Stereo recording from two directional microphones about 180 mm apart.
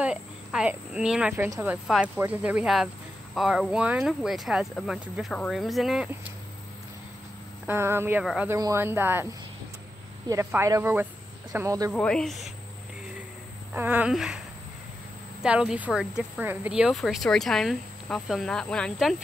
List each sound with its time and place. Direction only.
0.0 s speech: 5° right (ahead or behind)
7.6 s speech: 15° right (ahead or behind)
11.9 s speech: 5° left (ahead or behind)
13.7 s speech: 10° right (ahead or behind)
15.4 s speech: 5° right (ahead or behind)